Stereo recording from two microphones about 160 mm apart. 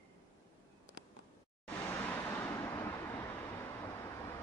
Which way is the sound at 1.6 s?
15° left (ahead or behind).